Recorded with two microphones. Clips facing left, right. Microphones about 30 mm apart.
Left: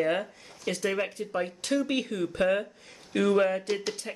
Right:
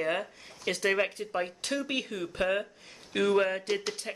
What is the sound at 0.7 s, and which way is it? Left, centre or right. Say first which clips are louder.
Speech: right 1 dB; right.